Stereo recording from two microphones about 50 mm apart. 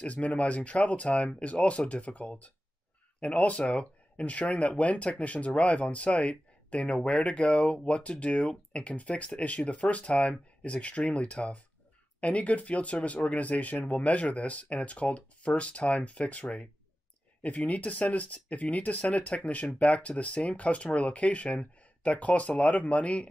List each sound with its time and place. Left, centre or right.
0.0 s speech: left